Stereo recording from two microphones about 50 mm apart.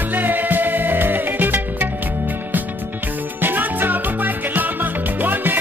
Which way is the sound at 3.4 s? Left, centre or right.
Right.